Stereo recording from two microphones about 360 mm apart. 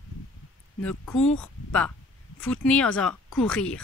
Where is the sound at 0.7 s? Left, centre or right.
Centre.